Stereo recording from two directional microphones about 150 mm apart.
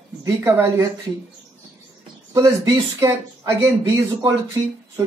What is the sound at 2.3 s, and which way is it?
Speech, 20° right (ahead or behind).